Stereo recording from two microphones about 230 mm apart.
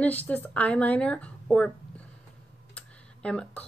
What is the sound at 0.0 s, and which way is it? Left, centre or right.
Speech, centre.